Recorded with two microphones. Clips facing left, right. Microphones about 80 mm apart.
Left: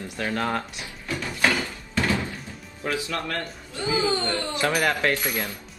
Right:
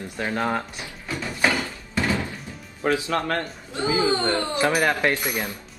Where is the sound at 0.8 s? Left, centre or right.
Centre.